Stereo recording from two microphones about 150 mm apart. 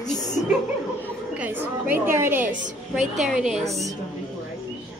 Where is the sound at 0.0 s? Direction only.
25° left (ahead or behind).